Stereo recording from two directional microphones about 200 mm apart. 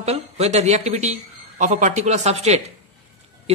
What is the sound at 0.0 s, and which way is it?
A man's voice, 30° right (ahead or behind).